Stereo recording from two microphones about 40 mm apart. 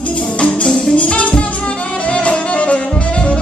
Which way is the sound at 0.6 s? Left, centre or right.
Centre.